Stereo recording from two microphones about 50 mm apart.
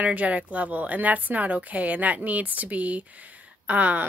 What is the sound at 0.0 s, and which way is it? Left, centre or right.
A woman's voice, right.